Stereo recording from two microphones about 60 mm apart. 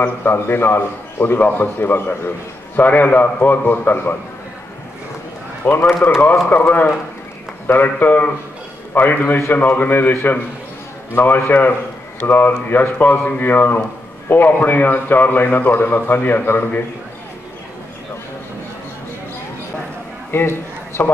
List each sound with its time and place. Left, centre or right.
0.0 s a man's voice: left
5.6 s a man's voice: left
20.2 s a sound: left